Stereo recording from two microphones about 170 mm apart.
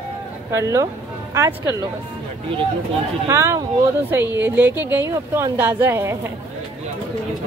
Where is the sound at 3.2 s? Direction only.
15° right (ahead or behind).